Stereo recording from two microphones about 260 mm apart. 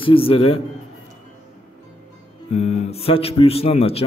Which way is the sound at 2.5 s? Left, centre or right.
Left.